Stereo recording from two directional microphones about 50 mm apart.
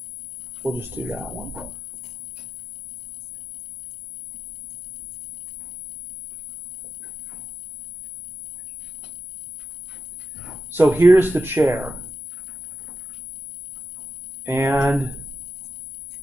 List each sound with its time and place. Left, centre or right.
0.7 s speech: right
1.0 s speech: right
10.7 s speech: right
14.4 s a sound: right